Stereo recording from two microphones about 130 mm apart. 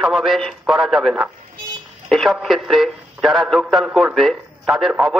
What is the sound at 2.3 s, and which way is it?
A man's voice, centre (ahead or behind).